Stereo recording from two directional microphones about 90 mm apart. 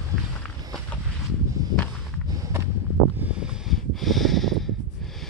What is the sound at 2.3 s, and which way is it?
Walk, 35° right (ahead or behind).